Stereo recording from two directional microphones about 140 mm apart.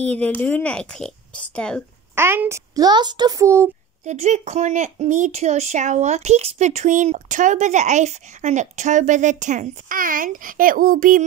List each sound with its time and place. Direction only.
0.0 s speech: 10° left (ahead or behind)
2.1 s a child's voice: 15° right (ahead or behind)
4.0 s speech: 55° right (ahead or behind); by 11.2 s 75° right (ahead or behind)